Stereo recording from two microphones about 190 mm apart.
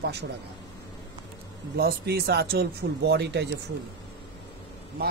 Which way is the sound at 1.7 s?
55° right (ahead or behind).